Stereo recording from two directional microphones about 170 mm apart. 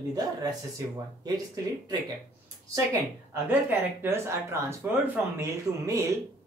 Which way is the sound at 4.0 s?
15° right (ahead or behind).